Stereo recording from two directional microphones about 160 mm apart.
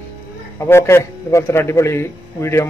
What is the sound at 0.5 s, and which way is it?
A man's voice, 15° left (ahead or behind).